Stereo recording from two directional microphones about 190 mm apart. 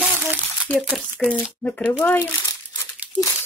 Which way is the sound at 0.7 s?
10° left (ahead or behind).